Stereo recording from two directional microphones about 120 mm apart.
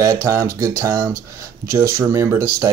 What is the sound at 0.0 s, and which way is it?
Speech, 25° right (ahead or behind).